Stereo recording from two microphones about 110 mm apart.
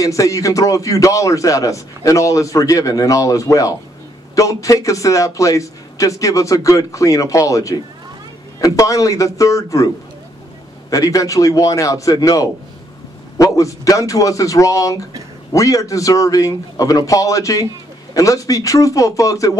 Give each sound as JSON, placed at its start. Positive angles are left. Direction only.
{"t": 0.0, "sound": "a man's voice", "side_deg": 30}
{"t": 10.9, "sound": "a man's voice", "side_deg": 30}